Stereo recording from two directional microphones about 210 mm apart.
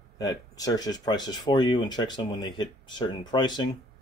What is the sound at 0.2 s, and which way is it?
Speech, 15° left (ahead or behind).